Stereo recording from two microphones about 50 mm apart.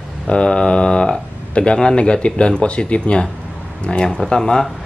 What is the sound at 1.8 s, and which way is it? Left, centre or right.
Speech, centre.